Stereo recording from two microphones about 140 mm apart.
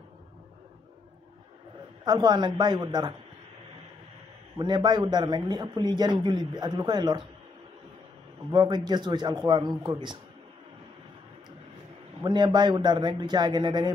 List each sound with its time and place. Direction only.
2.0 s a man's voice: 30° right (ahead or behind)
4.6 s a man's voice: 30° right (ahead or behind)
8.5 s a man's voice: 30° right (ahead or behind)
12.2 s a man's voice: 35° right (ahead or behind)